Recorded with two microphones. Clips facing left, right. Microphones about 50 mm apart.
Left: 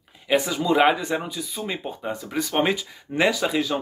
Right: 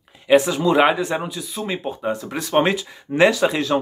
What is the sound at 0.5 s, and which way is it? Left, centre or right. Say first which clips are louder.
Speech: right 4 dB; right.